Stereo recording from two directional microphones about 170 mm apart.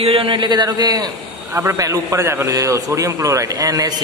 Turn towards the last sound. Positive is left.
turn(degrees=-20)  # may be behind; listen again after turning